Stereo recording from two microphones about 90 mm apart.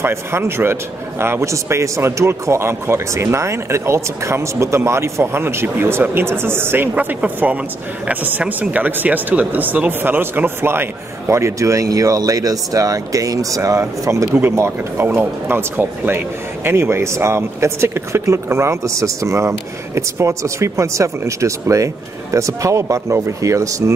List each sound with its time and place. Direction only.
0.0 s speech: 30° right (ahead or behind)